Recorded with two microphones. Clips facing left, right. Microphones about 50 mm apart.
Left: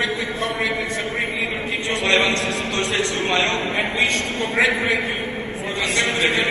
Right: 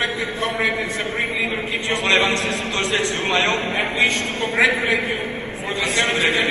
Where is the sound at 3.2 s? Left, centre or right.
Right.